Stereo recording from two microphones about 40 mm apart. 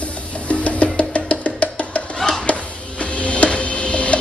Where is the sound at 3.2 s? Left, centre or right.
Left.